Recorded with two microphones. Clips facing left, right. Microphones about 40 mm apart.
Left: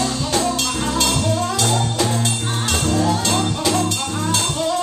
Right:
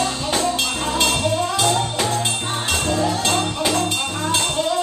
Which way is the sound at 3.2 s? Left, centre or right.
Centre.